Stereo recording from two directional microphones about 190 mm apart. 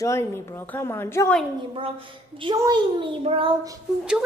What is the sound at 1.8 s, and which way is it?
A woman's voice, 30° right (ahead or behind).